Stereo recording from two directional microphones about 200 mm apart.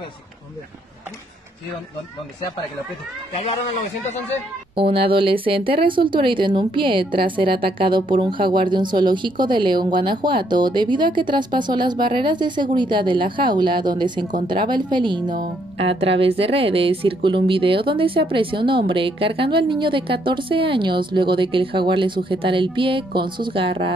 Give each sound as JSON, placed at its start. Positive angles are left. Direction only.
{"t": 4.7, "sound": "speech", "side_deg": -25}